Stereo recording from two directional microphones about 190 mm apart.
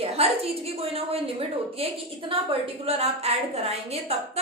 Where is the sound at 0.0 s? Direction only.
30° right (ahead or behind).